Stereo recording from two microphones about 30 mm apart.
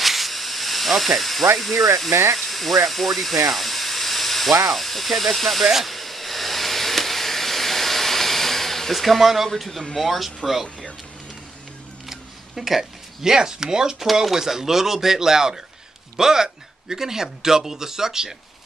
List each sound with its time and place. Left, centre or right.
0.0 s hiss: centre
2.4 s steam: centre
4.6 s speech: centre
5.9 s a sound: centre
9.2 s speech: centre
9.6 s speech: centre
12.1 s a sound: centre
13.2 s speech: right